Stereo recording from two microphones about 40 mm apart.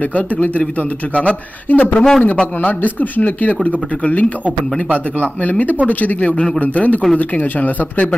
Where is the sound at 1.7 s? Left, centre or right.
Left.